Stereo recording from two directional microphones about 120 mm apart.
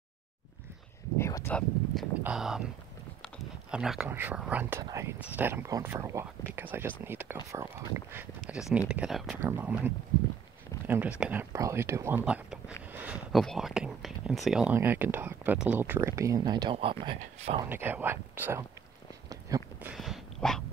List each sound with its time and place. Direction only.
1.1 s speech: 25° left (ahead or behind)
2.2 s speech: 5° right (ahead or behind)
3.7 s speech: 5° right (ahead or behind)
4.1 s speech: 15° right (ahead or behind)
8.5 s speech: 5° right (ahead or behind)
9.4 s speech: 20° right (ahead or behind)
11.5 s speech: 25° right (ahead or behind)
12.3 s speech: 10° right (ahead or behind)
14.8 s speech: 15° right (ahead or behind)
16.0 s speech: 25° right (ahead or behind)
16.7 s speech: 45° right (ahead or behind)
17.6 s speech: 15° right (ahead or behind)
20.0 s a sound: centre (ahead or behind)